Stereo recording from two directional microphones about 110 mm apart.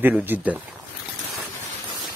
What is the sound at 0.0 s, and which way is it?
Speech, 15° right (ahead or behind).